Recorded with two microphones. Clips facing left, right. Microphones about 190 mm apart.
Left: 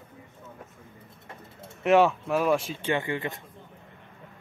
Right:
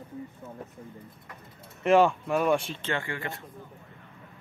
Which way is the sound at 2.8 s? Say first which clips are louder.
Left 4 dB; 20° left (ahead or behind).